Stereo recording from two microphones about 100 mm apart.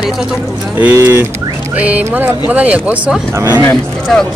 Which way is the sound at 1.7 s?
15° right (ahead or behind).